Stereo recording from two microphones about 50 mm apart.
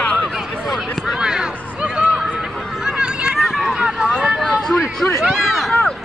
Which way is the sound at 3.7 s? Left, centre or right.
Centre.